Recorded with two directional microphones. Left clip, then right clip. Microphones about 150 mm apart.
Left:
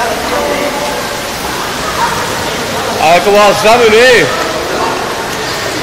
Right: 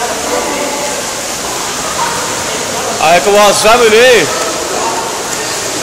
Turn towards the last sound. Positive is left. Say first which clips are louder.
# even
turn(degrees=-20)  # may be behind; listen again after turning